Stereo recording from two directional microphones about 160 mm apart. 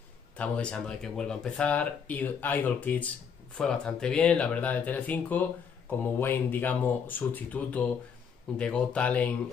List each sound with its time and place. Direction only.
0.4 s speech: 5° left (ahead or behind)